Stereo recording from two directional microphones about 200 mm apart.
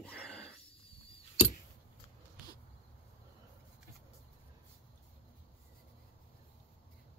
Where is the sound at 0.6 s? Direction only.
30° left (ahead or behind).